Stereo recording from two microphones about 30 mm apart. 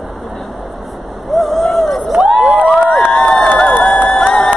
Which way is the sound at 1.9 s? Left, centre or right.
Centre.